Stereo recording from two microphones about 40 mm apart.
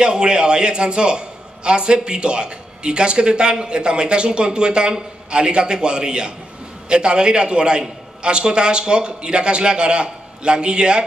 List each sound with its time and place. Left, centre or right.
0.0 s a man's voice: right